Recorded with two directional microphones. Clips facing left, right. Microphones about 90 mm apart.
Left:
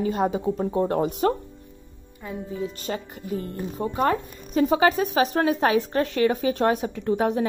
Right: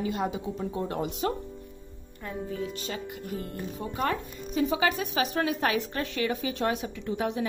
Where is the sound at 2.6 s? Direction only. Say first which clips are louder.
Left 4 dB; 40° left (ahead or behind).